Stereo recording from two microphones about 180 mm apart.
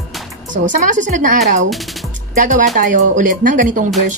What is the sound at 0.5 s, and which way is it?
Speech, 45° right (ahead or behind).